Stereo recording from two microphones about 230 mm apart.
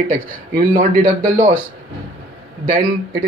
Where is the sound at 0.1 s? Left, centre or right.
Right.